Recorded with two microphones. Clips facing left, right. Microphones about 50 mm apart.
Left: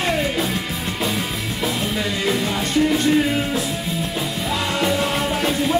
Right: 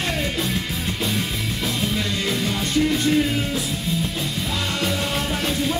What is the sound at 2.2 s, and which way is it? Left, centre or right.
Music, centre.